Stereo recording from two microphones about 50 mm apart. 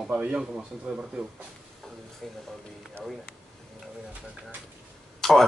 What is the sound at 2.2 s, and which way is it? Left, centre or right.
Speech, centre.